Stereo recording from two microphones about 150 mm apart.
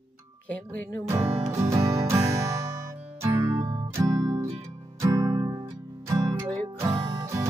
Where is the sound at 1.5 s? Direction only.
20° right (ahead or behind).